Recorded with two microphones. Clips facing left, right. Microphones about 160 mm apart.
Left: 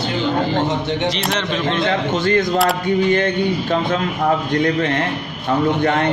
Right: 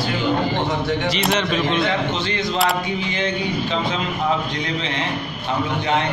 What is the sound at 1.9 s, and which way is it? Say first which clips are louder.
Speech: left 5 dB; 50° left (ahead or behind).